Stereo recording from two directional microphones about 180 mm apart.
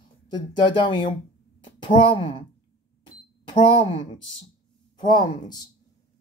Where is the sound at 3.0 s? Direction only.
25° left (ahead or behind).